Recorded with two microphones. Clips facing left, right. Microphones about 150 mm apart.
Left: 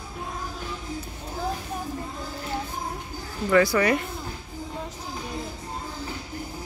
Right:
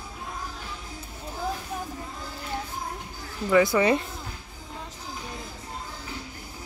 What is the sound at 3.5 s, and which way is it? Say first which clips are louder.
Speech: even; 20° right (ahead or behind).